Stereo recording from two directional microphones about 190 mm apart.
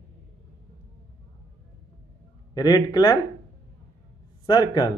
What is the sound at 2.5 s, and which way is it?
Speech, 20° left (ahead or behind).